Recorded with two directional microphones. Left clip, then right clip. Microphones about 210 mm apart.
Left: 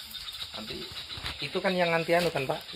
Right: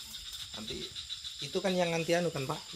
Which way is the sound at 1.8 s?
20° right (ahead or behind).